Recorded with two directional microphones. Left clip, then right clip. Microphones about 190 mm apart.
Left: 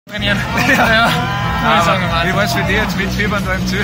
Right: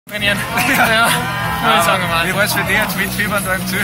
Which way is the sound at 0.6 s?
30° left (ahead or behind).